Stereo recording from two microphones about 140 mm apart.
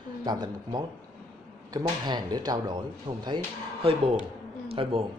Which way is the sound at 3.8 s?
40° right (ahead or behind).